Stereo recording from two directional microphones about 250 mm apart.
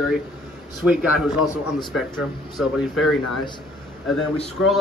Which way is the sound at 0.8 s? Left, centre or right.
Centre.